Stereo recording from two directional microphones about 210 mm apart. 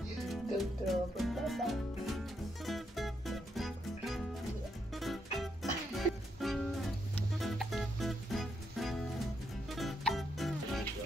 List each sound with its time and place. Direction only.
0.3 s music: centre (ahead or behind)